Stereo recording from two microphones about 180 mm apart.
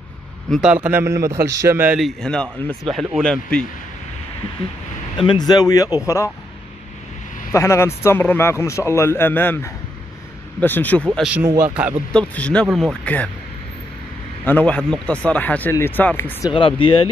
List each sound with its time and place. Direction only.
0.5 s a man's voice: 5° right (ahead or behind)
5.1 s speech: 25° left (ahead or behind)
7.5 s speech: 15° left (ahead or behind)
11.1 s speech: 5° right (ahead or behind)
12.1 s speech: 5° left (ahead or behind)
14.4 s speech: 10° left (ahead or behind)
16.4 s speech: 30° left (ahead or behind)